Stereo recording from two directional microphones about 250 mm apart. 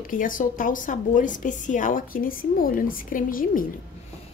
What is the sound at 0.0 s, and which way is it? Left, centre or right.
A woman's voice, left.